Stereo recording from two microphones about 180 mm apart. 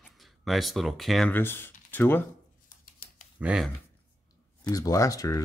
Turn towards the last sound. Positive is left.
turn(degrees=20)  # may be behind; listen again after turning